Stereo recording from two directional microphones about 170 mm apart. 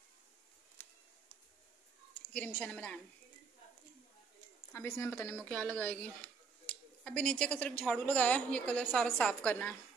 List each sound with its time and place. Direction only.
0.8 s a sound: 10° left (ahead or behind)
2.3 s speech: 10° left (ahead or behind)
4.7 s speech: 15° left (ahead or behind)